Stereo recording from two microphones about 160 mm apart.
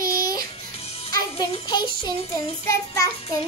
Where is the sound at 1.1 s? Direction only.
25° left (ahead or behind).